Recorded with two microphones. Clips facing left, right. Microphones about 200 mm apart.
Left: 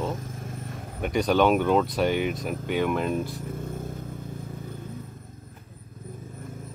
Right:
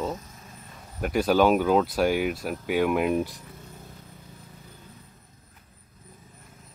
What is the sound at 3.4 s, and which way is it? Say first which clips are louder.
Vehicle: left 12 dB; 50° left (ahead or behind).